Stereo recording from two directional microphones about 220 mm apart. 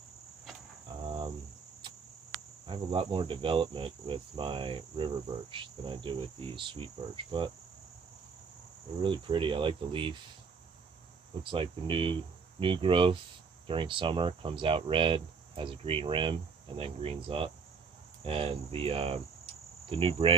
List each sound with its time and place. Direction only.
1.0 s cricket: 20° right (ahead or behind)
2.6 s cricket: 25° right (ahead or behind)
9.0 s cricket: 20° right (ahead or behind)
11.4 s cricket: 25° right (ahead or behind)